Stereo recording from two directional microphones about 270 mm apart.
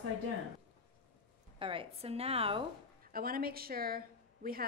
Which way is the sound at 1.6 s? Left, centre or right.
Centre.